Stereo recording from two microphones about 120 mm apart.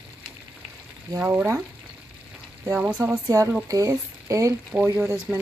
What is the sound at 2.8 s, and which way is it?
Speech, 10° right (ahead or behind).